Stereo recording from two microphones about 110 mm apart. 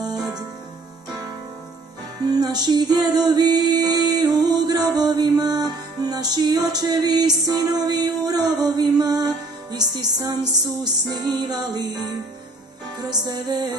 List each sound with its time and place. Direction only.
0.1 s music: 5° right (ahead or behind)
2.3 s music: 35° right (ahead or behind)